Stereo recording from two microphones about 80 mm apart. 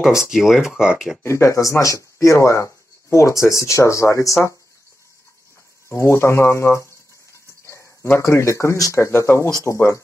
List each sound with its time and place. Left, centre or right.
0.0 s speech: centre
1.2 s speech: left
5.9 s speech: left
7.6 s a sound: left
8.2 s speech: left